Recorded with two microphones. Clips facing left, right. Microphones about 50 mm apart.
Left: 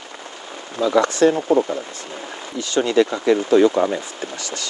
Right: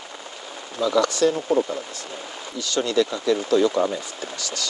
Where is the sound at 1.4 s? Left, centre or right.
Left.